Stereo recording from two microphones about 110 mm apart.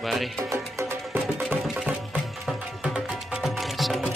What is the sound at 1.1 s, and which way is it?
Music, 20° right (ahead or behind).